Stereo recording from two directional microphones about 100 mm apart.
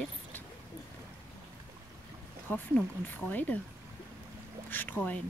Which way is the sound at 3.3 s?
15° left (ahead or behind).